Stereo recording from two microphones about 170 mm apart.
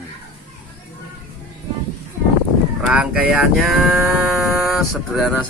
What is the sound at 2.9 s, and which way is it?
Speech, 5° right (ahead or behind).